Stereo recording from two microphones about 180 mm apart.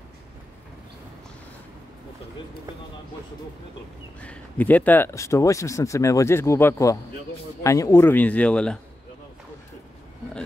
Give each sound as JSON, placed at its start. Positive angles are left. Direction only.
{"t": 4.2, "sound": "speech", "side_deg": 10}